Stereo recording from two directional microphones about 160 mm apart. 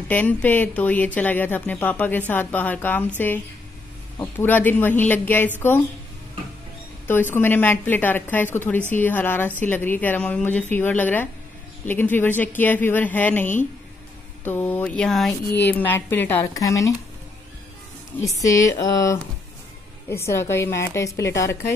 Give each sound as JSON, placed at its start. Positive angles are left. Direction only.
{"t": 0.1, "sound": "speech", "side_deg": 10}
{"t": 4.2, "sound": "speech", "side_deg": 15}
{"t": 7.1, "sound": "speech", "side_deg": 15}
{"t": 15.7, "sound": "speech", "side_deg": 10}
{"t": 18.2, "sound": "speech", "side_deg": 20}